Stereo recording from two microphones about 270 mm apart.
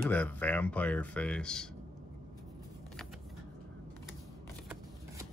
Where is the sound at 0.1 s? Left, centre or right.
Centre.